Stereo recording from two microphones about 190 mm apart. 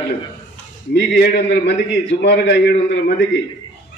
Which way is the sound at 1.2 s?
60° left (ahead or behind).